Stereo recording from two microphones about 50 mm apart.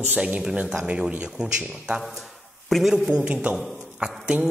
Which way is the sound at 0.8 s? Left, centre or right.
Centre.